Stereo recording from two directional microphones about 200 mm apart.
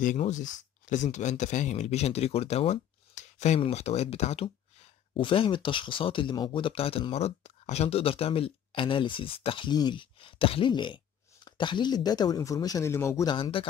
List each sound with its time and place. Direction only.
0.0 s speech: 40° left (ahead or behind)